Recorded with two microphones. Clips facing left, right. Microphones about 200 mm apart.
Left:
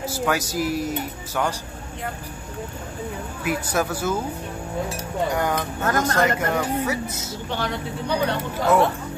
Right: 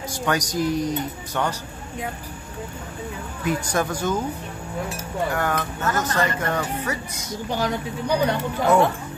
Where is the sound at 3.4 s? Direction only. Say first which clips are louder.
Right 1 dB; 5° left (ahead or behind).